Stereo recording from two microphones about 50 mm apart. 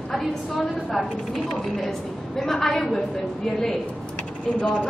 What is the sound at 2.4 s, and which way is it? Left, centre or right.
Speech, centre.